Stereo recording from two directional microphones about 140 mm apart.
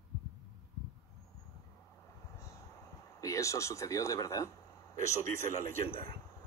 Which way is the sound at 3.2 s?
20° left (ahead or behind).